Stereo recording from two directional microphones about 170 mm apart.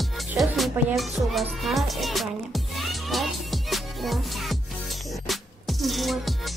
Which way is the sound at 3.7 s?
Centre (ahead or behind).